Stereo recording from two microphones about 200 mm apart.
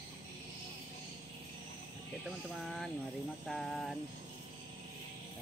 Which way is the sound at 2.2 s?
Centre (ahead or behind).